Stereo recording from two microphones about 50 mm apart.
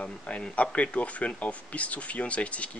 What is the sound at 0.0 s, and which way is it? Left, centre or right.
Speech, left.